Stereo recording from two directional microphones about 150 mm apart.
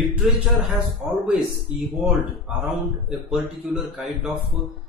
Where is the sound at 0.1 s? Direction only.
Centre (ahead or behind).